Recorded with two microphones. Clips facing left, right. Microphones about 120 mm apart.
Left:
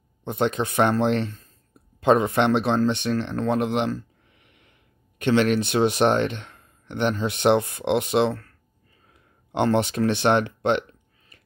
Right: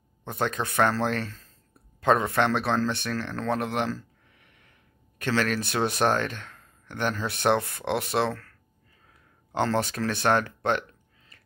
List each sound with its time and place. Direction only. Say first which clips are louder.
0.2 s speech: left 5 dB; 20° left (ahead or behind)
5.2 s speech: left 6 dB; 20° left (ahead or behind)
9.5 s speech: left 4 dB; 20° left (ahead or behind)